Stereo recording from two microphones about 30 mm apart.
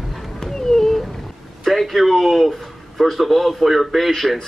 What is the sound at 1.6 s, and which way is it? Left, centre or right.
A man's voice, centre.